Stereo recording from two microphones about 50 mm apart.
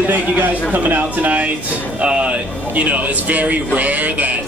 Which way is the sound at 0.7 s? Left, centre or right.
Right.